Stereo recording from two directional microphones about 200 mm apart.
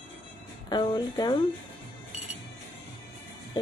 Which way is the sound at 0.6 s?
20° left (ahead or behind).